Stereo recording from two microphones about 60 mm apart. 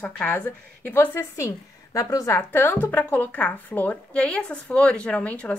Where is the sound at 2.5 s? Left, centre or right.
Left.